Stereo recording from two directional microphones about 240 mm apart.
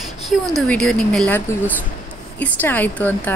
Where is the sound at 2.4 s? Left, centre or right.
Centre.